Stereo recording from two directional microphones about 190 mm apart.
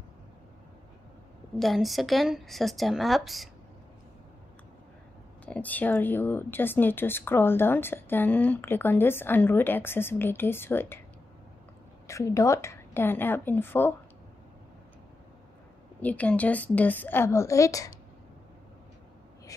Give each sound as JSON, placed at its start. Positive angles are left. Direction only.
{"t": 1.6, "sound": "speech", "side_deg": 0}
{"t": 5.4, "sound": "speech", "side_deg": 10}
{"t": 12.1, "sound": "speech", "side_deg": 15}
{"t": 16.0, "sound": "speech", "side_deg": 10}